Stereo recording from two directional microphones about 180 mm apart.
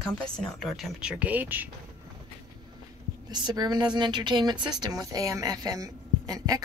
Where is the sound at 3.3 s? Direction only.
25° right (ahead or behind).